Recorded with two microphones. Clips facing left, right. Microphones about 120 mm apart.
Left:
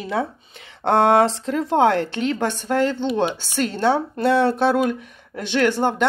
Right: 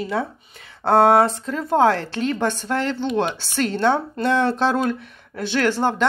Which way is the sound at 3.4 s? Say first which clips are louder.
Even; 45° right (ahead or behind).